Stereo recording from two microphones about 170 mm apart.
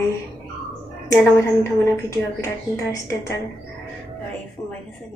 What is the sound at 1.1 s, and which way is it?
A woman's voice, 15° left (ahead or behind).